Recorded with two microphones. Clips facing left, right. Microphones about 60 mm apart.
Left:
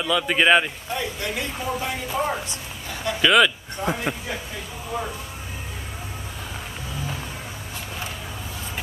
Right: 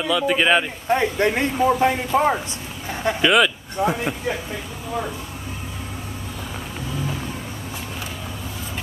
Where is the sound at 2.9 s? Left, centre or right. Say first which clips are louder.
Right 5 dB; right.